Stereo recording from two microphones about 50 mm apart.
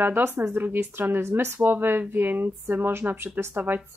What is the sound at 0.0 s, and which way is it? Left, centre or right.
Speech, right.